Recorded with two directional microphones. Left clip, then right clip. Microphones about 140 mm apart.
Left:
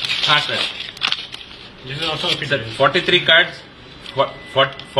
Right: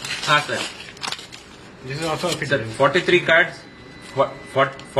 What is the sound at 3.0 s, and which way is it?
A man's voice, 10° right (ahead or behind).